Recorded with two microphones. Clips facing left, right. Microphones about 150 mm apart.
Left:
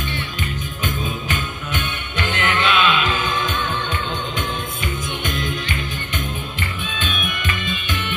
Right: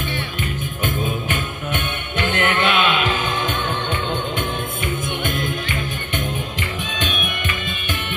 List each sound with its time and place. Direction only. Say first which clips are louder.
2.3 s music: right 1 dB; 55° right (ahead or behind)
5.2 s music: right 1 dB; 55° right (ahead or behind)